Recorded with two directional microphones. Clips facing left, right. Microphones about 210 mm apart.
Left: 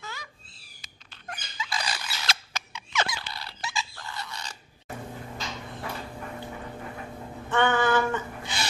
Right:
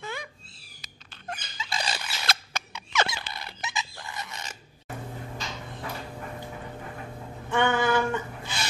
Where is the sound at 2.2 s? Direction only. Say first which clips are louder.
Right 2 dB; 55° right (ahead or behind).